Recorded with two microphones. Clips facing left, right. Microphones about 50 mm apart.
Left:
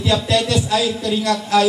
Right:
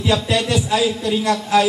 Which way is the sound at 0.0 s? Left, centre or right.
Centre.